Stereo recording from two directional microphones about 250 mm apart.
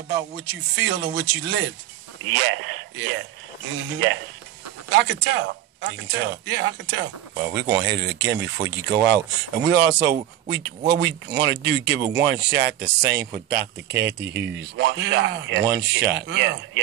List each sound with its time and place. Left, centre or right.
0.5 s a man's voice: right